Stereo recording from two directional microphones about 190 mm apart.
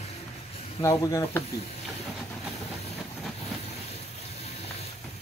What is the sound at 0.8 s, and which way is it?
Speech, 15° left (ahead or behind).